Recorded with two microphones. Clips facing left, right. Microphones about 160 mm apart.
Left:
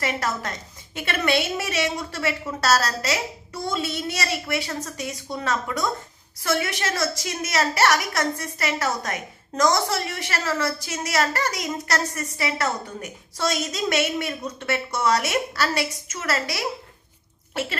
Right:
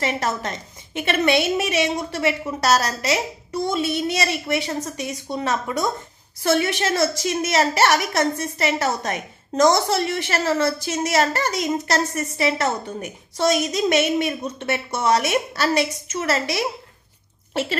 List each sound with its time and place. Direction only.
0.0 s a woman's voice: 25° right (ahead or behind)